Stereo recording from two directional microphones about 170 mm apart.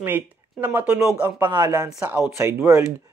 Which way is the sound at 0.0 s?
15° right (ahead or behind).